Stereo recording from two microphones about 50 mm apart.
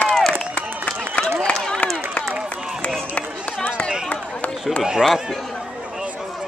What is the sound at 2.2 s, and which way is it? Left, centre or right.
Run, left.